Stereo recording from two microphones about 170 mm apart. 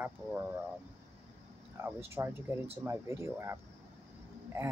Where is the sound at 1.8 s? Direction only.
15° right (ahead or behind).